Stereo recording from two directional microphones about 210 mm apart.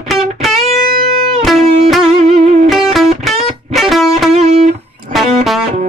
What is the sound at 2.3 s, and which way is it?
Music, 30° right (ahead or behind).